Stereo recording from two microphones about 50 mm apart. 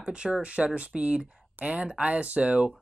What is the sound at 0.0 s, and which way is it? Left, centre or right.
Speech, right.